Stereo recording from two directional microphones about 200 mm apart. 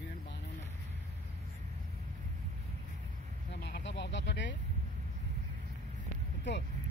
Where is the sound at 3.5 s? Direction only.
60° left (ahead or behind).